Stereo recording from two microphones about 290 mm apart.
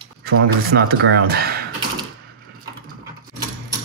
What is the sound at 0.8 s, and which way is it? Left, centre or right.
Speech, right.